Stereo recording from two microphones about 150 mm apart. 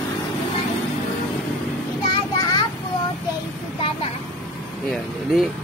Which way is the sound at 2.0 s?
30° left (ahead or behind).